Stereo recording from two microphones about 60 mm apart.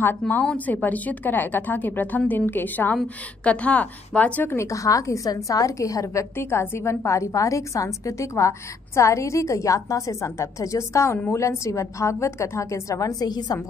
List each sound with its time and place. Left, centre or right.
0.5 s a woman's voice: left
4.5 s a woman's voice: left
6.3 s a woman's voice: left